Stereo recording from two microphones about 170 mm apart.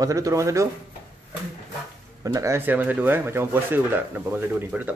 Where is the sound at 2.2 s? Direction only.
20° right (ahead or behind).